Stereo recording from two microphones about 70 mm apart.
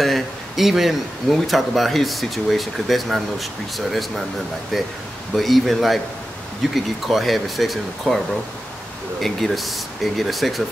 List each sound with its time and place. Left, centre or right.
0.0 s speech: centre
9.2 s speech: centre